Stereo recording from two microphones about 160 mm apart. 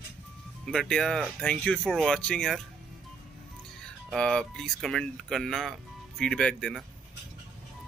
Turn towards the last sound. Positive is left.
turn(degrees=5)  # may be behind; listen again after turning